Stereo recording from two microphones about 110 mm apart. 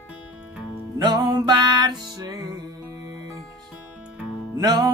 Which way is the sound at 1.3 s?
40° right (ahead or behind).